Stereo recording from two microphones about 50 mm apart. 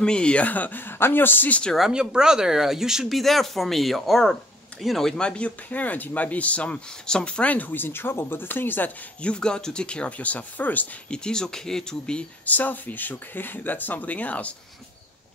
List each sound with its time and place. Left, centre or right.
0.0 s speech: centre
0.5 s speech: left
1.9 s speech: centre
3.2 s speech: centre
5.1 s speech: centre
5.7 s speech: left
9.2 s speech: centre; by 11.0 s left
11.1 s speech: centre
12.4 s speech: left